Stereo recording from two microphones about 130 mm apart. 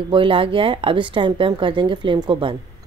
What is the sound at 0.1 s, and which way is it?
A woman's voice, 40° right (ahead or behind).